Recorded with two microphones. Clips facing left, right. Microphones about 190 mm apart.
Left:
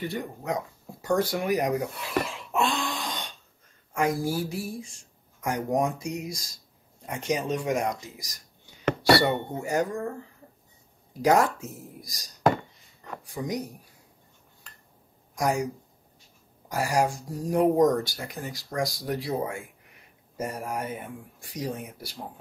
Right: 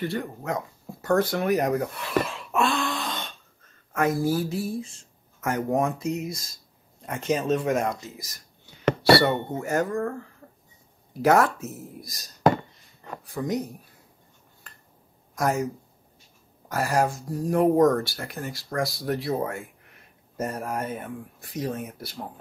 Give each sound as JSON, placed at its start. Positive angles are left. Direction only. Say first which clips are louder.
{"t": 0.0, "sound": "speech", "louder": "right 3 dB", "side_deg": 15}
{"t": 2.2, "sound": "cough", "louder": "right 2 dB", "side_deg": 15}
{"t": 3.9, "sound": "speech", "louder": "right 3 dB", "side_deg": 15}
{"t": 8.8, "sound": "dishes", "louder": "right 3 dB", "side_deg": -35}
{"t": 9.2, "sound": "speech", "louder": "right 2 dB", "side_deg": 15}
{"t": 11.2, "sound": "speech", "louder": "right 2 dB", "side_deg": 15}
{"t": 15.3, "sound": "speech", "louder": "right 1 dB", "side_deg": 15}